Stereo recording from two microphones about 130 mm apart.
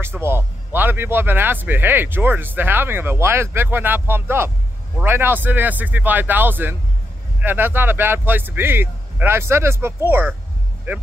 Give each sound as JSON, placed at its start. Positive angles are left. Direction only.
{"t": 0.0, "sound": "speech", "side_deg": -20}